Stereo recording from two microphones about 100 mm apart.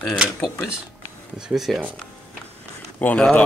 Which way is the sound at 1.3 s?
5° right (ahead or behind).